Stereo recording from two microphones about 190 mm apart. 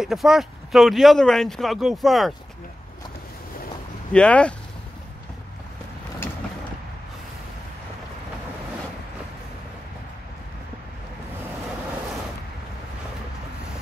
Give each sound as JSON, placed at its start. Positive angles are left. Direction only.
{"t": 0.0, "sound": "speech", "side_deg": 0}
{"t": 4.1, "sound": "speech", "side_deg": 5}